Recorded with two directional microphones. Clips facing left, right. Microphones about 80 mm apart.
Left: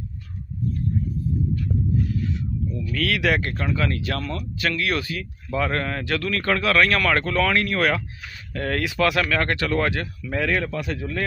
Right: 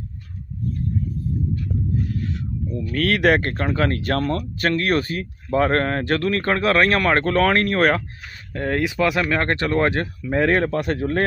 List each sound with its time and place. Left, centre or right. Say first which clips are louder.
2.3 s speech: right 1 dB; right
8.5 s speech: right 2 dB; right